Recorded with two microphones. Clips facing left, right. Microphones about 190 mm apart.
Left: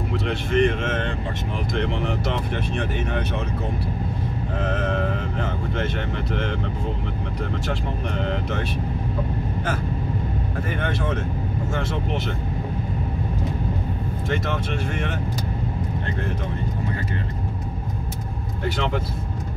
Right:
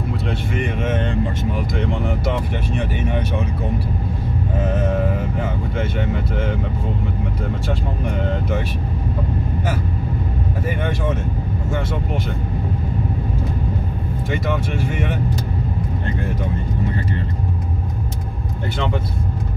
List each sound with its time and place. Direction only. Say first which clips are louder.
0.3 s speech: left 7 dB; 5° right (ahead or behind)
2.7 s speech: right 5 dB; 10° right (ahead or behind)
4.6 s speech: right 3 dB; 10° right (ahead or behind)
8.3 s speech: right 3 dB; 5° right (ahead or behind)
14.3 s speech: right 3 dB; 5° right (ahead or behind)